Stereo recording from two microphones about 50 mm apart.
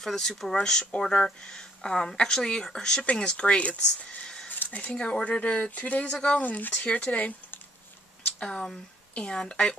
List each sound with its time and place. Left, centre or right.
0.0 s speech: centre
6.4 s speech: left
8.4 s speech: centre